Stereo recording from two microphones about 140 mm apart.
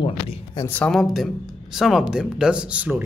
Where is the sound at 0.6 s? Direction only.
15° left (ahead or behind).